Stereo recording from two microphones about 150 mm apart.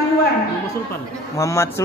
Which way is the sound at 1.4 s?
20° left (ahead or behind).